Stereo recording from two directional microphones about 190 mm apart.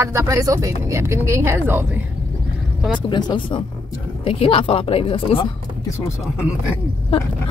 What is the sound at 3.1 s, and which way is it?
Speech, 25° left (ahead or behind).